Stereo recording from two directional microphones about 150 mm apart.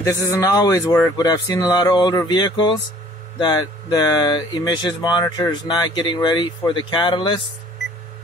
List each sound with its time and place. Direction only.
0.0 s speech: 20° left (ahead or behind); by 7.4 s 35° left (ahead or behind)